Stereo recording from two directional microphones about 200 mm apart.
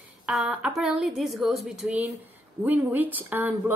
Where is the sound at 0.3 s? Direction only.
5° right (ahead or behind).